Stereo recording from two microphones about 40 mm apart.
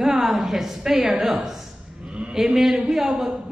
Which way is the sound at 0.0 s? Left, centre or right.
Centre.